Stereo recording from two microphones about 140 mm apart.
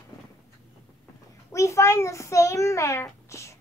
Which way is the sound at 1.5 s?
20° left (ahead or behind).